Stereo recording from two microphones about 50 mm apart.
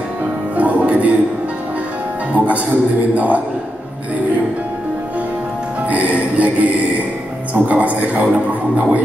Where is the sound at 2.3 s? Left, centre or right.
Right.